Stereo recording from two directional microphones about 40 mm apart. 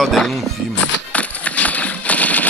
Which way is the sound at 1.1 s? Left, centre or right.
Left.